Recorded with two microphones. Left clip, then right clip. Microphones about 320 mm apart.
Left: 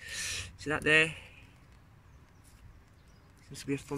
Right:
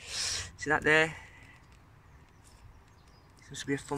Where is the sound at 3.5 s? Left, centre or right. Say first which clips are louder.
Right 2 dB; centre.